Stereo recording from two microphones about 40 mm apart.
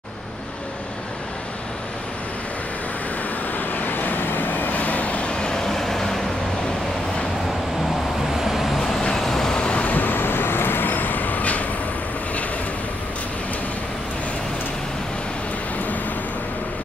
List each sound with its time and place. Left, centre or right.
3.5 s vehicle: left; by 6.1 s centre
8.4 s vehicle: centre
8.7 s vehicle: centre
9.5 s vehicle: left
9.9 s vehicle: left